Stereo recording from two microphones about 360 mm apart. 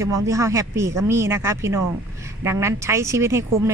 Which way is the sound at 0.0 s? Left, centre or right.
Centre.